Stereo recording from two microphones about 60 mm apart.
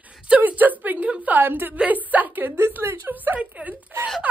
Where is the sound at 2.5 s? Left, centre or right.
Right.